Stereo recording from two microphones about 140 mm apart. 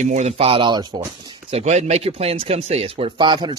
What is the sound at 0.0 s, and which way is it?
Speech, 50° right (ahead or behind).